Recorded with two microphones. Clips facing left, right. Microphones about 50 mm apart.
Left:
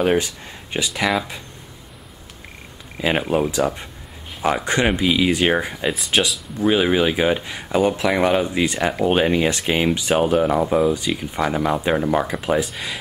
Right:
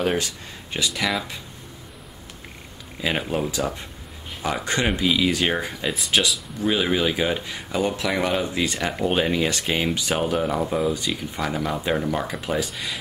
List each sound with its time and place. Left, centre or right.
0.0 s speech: centre
3.0 s speech: centre
5.9 s speech: centre
6.6 s speech: centre